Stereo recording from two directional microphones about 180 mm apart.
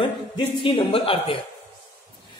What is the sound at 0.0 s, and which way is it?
Speech, 30° left (ahead or behind).